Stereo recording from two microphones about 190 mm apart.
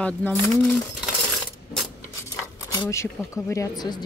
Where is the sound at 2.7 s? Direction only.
15° left (ahead or behind).